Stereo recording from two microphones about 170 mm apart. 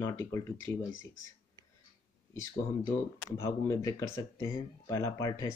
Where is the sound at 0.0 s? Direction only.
15° left (ahead or behind).